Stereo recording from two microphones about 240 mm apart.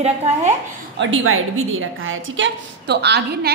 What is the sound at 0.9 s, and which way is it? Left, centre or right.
A woman's voice, right.